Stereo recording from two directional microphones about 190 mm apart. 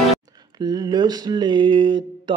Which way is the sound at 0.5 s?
20° right (ahead or behind).